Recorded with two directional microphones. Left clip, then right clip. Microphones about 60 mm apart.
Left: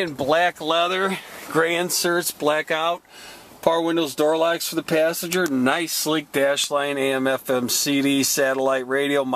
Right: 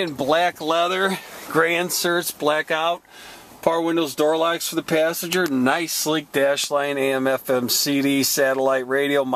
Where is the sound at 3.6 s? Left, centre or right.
Centre.